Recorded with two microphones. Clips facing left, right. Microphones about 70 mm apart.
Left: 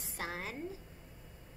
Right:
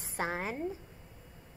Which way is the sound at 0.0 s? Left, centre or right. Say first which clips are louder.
Right 6 dB; right.